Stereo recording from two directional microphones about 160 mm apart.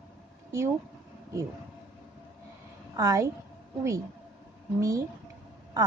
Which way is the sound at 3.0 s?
20° right (ahead or behind).